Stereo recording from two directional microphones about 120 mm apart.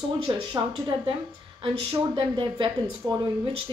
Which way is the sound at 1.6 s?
45° right (ahead or behind).